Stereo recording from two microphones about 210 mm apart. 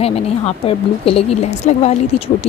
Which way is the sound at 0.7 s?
25° left (ahead or behind).